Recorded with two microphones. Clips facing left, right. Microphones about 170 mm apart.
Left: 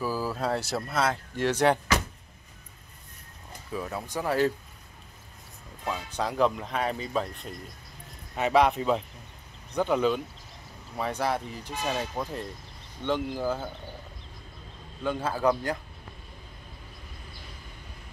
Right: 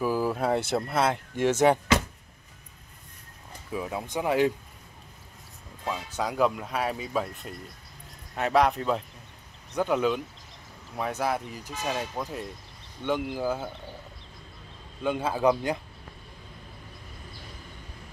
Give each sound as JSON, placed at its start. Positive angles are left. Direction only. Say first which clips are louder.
{"t": 0.0, "sound": "speech", "louder": "right 3 dB", "side_deg": -20}
{"t": 1.6, "sound": "a man's voice", "louder": "right 2 dB", "side_deg": -10}
{"t": 3.7, "sound": "a man's voice", "louder": "right 2 dB", "side_deg": -10}
{"t": 5.9, "sound": "a man's voice", "louder": "even", "side_deg": -5}
{"t": 15.0, "sound": "a man's voice", "louder": "right 2 dB", "side_deg": -15}